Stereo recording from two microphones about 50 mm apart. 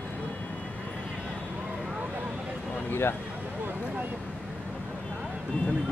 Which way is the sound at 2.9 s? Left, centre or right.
Left.